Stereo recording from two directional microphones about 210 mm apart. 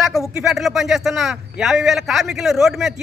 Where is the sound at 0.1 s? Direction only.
Centre (ahead or behind).